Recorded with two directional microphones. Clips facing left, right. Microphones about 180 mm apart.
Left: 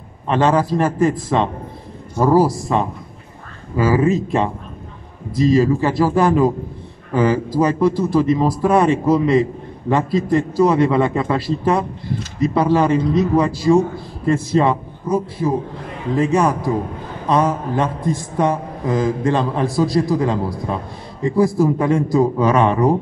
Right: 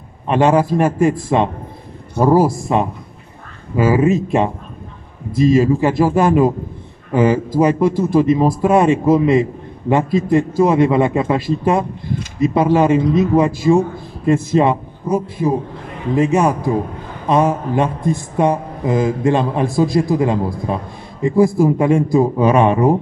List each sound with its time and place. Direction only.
0.3 s a man's voice: 15° right (ahead or behind)
2.1 s a man's voice: 15° right (ahead or behind)